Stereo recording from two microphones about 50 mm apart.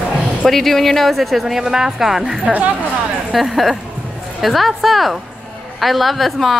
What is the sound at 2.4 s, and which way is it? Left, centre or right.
Speech, right.